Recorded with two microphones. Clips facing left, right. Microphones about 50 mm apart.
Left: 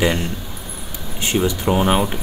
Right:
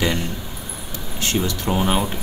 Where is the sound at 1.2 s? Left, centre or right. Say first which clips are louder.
Left 4 dB; centre.